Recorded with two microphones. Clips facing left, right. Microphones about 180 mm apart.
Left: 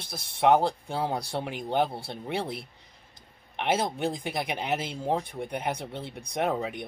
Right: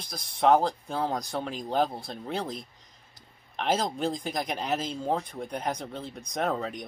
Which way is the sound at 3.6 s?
10° left (ahead or behind).